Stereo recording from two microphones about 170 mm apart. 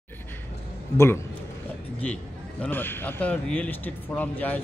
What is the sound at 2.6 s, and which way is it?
A man's voice, 10° left (ahead or behind).